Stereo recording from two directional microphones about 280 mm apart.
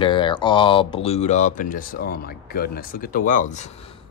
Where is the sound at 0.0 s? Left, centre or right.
Centre.